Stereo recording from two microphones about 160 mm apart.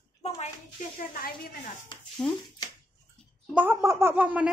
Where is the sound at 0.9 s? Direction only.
65° left (ahead or behind).